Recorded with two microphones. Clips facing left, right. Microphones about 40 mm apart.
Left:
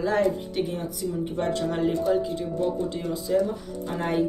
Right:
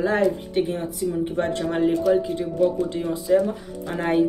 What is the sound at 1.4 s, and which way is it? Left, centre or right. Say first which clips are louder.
Speech: right 1 dB; right.